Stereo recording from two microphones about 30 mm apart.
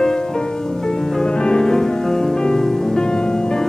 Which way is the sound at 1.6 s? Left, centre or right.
Centre.